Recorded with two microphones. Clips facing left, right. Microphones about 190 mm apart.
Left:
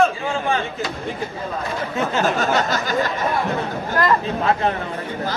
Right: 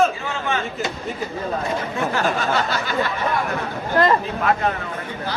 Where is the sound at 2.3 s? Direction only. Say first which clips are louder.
Left 2 dB; 40° left (ahead or behind).